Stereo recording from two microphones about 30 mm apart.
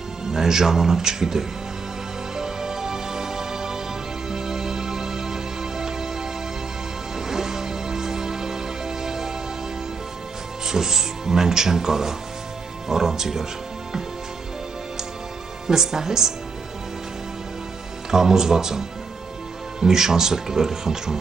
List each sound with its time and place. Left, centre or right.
0.2 s speech: centre
2.3 s music: centre
7.2 s music: centre
10.7 s speech: centre
15.6 s speech: centre
18.1 s speech: centre